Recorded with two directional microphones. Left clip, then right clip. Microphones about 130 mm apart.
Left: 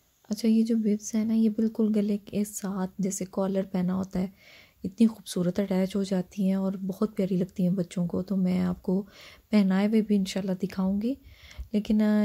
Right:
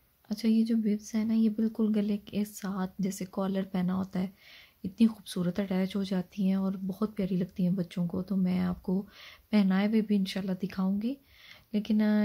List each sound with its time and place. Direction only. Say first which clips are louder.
0.3 s speech: left 3 dB; 25° left (ahead or behind)